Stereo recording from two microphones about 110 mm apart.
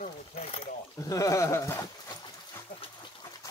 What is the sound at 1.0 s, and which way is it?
Speech, 30° left (ahead or behind).